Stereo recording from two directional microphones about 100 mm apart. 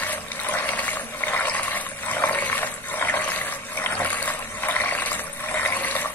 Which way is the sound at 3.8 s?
20° left (ahead or behind).